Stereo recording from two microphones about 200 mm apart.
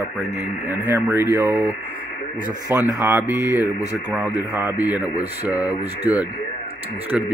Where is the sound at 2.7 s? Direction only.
20° left (ahead or behind).